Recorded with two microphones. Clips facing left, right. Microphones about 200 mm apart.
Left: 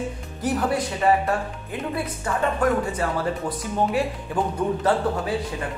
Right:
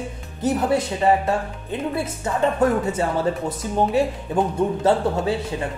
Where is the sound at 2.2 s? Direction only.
25° right (ahead or behind).